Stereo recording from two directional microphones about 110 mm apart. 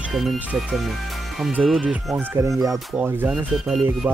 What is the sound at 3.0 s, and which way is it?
Speech, 15° right (ahead or behind).